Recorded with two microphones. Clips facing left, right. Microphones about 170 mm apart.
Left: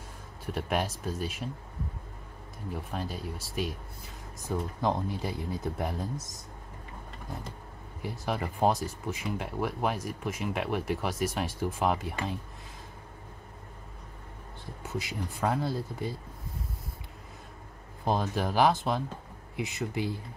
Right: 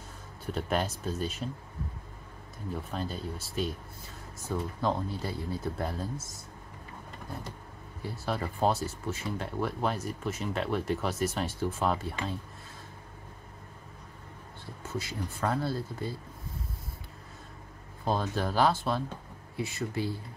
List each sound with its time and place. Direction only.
0.5 s speech: 10° left (ahead or behind)
2.7 s speech: 10° left (ahead or behind)
8.0 s speech: 15° left (ahead or behind)
14.8 s speech: 15° left (ahead or behind)
18.0 s speech: 15° left (ahead or behind)